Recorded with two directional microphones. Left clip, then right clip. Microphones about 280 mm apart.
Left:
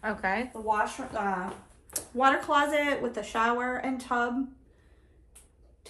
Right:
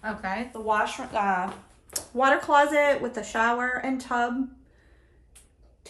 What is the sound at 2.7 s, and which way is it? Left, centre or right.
Speech, right.